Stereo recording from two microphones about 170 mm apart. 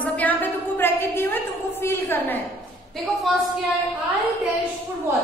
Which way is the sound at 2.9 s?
Centre (ahead or behind).